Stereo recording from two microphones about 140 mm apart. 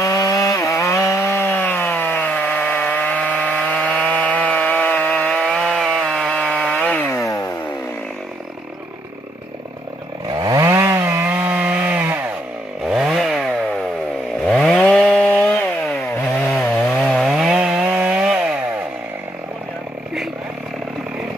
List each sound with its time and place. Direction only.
0.0 s wood: 25° left (ahead or behind)
10.2 s chainsaw: 30° right (ahead or behind)
12.8 s chainsaw: 5° right (ahead or behind)
16.9 s chainsaw: 5° right (ahead or behind)